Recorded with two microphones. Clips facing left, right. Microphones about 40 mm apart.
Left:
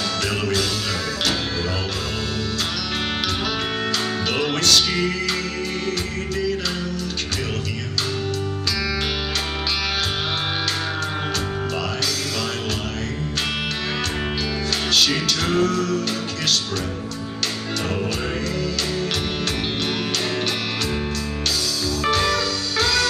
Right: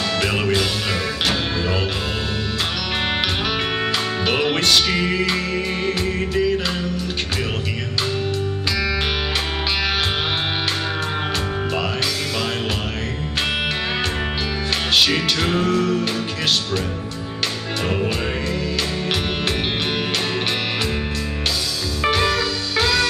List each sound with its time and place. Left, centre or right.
0.2 s music: right
4.3 s music: right
15.0 s music: right
22.0 s music: centre